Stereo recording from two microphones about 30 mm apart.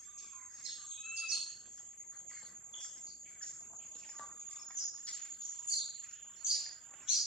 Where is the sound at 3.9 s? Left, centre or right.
Centre.